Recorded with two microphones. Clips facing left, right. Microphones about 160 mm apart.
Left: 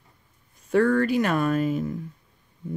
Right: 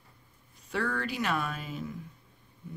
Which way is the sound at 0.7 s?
50° left (ahead or behind).